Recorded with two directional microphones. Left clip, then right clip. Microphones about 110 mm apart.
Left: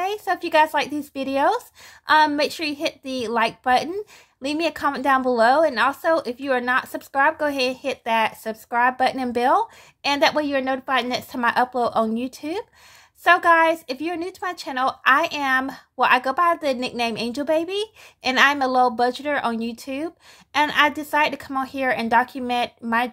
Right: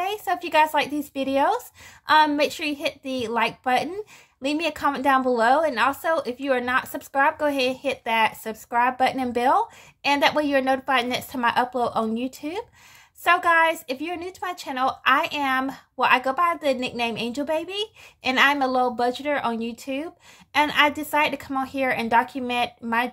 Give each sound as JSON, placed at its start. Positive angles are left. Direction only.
{"t": 0.0, "sound": "speech", "side_deg": 30}
{"t": 11.0, "sound": "speech", "side_deg": 30}